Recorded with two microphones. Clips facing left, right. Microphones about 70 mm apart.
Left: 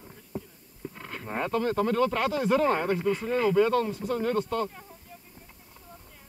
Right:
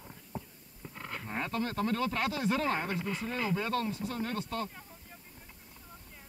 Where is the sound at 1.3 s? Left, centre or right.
Left.